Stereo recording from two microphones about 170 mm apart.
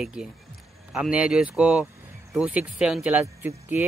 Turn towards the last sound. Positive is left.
turn(degrees=-10)  # may be behind; listen again after turning